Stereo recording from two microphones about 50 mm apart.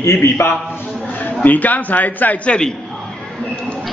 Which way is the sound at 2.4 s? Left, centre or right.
Centre.